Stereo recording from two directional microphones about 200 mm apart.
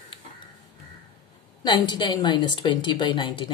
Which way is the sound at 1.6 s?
20° left (ahead or behind).